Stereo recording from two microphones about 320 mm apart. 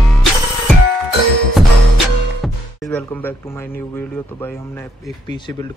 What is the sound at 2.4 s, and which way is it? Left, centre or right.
Music, centre.